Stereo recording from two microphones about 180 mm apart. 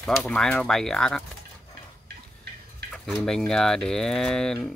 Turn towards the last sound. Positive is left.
turn(degrees=5)  # may be behind; listen again after turning